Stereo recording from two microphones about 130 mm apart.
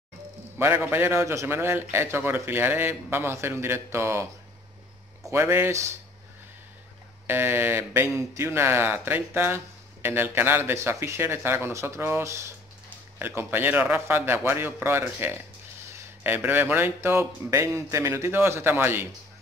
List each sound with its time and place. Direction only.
0.6 s a man's voice: 15° right (ahead or behind)
5.3 s speech: 20° right (ahead or behind)
7.2 s a man's voice: 15° right (ahead or behind)